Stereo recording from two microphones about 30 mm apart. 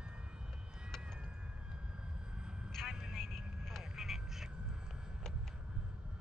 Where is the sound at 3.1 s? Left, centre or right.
Centre.